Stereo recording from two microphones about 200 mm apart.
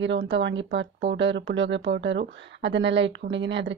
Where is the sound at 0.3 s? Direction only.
65° right (ahead or behind).